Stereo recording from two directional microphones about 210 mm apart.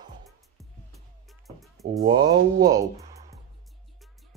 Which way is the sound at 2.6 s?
15° right (ahead or behind).